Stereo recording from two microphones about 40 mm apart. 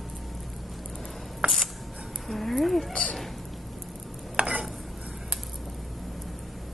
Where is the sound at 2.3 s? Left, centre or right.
Centre.